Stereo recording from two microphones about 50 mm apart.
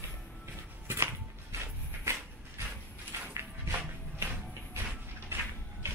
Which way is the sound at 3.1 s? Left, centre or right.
Right.